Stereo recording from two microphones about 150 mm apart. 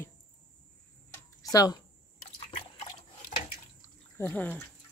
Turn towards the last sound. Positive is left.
turn(degrees=10)  # may be behind; listen again after turning